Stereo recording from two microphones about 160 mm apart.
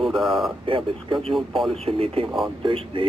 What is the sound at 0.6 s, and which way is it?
Speech, 35° right (ahead or behind).